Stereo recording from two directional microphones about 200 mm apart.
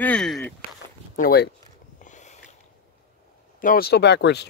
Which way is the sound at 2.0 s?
35° left (ahead or behind).